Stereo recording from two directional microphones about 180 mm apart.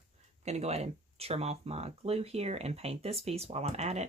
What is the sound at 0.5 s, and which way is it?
Speech, 35° right (ahead or behind).